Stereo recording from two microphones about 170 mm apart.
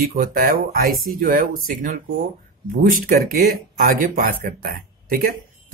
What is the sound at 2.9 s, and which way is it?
Speech, 60° right (ahead or behind).